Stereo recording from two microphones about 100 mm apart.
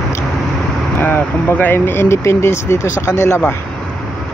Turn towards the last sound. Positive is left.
turn(degrees=30)  # may be behind; listen again after turning